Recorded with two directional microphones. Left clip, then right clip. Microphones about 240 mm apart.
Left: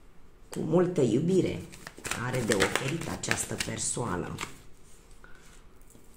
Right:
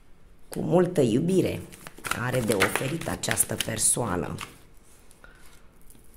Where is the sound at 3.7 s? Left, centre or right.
Right.